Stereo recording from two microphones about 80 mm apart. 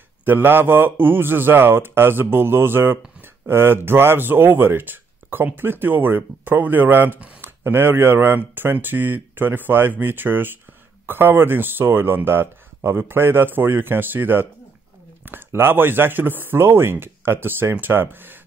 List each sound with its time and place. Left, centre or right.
0.2 s speech: right